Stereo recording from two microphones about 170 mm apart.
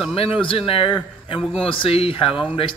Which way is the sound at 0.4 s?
30° left (ahead or behind).